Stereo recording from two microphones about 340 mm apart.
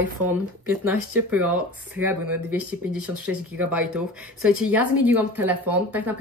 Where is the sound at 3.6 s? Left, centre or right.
Centre.